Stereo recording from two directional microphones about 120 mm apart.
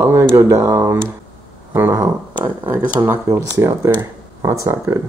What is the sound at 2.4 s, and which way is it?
Speech, 15° right (ahead or behind).